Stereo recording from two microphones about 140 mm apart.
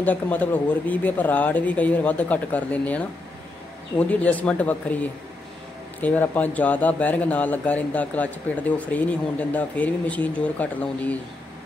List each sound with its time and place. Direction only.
0.0 s a man's voice: 10° left (ahead or behind)
4.1 s a man's voice: 10° left (ahead or behind)